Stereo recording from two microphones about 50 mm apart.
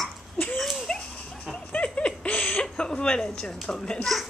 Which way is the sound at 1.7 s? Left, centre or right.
Left.